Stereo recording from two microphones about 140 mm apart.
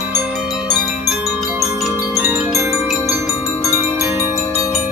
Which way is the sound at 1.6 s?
Centre (ahead or behind).